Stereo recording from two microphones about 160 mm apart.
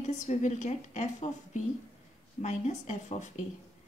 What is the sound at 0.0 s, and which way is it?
A woman's voice, 50° left (ahead or behind).